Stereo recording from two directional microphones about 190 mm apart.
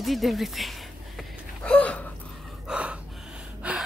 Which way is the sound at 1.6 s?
5° left (ahead or behind).